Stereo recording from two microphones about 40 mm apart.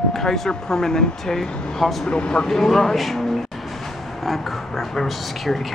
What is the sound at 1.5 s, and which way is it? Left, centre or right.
Speech, left.